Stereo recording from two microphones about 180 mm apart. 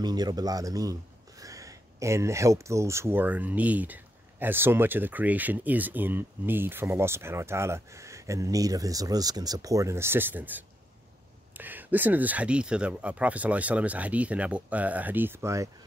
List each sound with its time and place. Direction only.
0.0 s speech: 20° right (ahead or behind)